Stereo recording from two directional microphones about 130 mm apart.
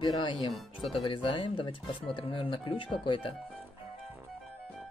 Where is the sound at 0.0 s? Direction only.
35° left (ahead or behind).